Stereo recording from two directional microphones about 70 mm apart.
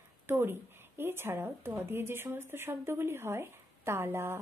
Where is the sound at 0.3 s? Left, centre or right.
Right.